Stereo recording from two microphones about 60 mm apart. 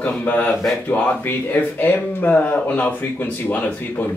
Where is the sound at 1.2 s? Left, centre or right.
Left.